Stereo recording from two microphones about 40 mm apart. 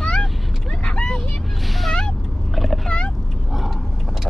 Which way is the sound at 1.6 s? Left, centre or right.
Centre.